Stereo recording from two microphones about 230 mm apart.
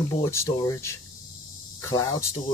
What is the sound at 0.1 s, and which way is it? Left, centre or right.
Speech, centre.